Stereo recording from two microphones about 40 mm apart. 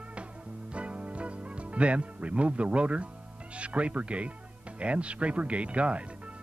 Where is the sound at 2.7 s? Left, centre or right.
Right.